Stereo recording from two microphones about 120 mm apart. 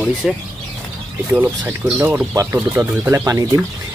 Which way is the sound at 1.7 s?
15° right (ahead or behind).